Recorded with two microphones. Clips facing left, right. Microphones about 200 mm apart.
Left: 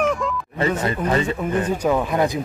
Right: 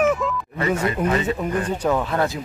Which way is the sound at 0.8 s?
35° left (ahead or behind).